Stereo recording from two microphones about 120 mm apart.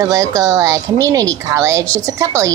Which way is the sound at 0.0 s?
25° right (ahead or behind).